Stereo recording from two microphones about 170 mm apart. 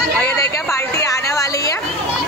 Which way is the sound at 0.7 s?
20° left (ahead or behind).